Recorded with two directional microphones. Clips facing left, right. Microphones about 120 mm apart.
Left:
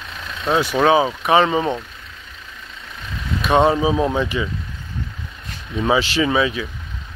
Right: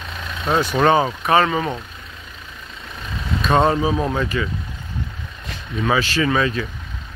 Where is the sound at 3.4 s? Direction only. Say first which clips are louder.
Left 1 dB; 15° left (ahead or behind).